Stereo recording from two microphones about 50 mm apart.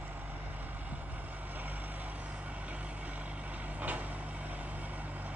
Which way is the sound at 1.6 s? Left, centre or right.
Right.